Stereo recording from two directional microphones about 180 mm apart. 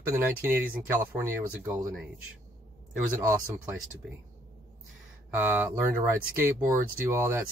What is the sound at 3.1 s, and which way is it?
Speech, 15° right (ahead or behind).